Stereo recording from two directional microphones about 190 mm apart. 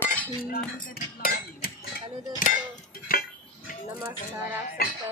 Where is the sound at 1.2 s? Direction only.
50° left (ahead or behind).